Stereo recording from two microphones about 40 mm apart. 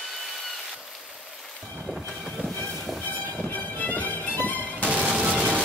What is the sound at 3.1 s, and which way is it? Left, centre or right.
Music, left.